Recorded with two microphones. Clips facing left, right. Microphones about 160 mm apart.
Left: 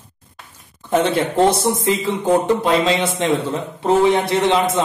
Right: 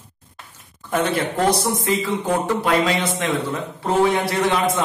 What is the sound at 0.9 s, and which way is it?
Speech, 25° left (ahead or behind).